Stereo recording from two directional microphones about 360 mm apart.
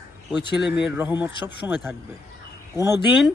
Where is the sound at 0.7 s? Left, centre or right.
Centre.